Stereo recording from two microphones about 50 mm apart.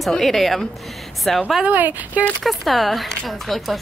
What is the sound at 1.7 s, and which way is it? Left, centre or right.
Speech, right.